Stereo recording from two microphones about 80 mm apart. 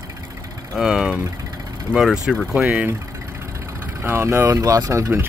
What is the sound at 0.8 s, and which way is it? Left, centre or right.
Speech, centre.